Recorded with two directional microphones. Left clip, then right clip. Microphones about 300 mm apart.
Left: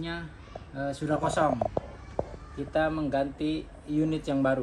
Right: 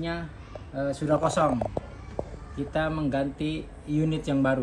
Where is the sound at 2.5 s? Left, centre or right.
Right.